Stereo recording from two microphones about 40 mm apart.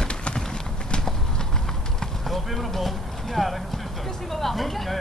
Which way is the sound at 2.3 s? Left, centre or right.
Centre.